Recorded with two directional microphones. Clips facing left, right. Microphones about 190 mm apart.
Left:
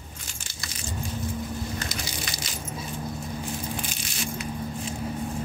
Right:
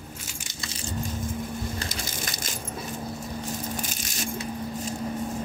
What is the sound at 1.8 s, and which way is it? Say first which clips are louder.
Crushing: even; 50° right (ahead or behind).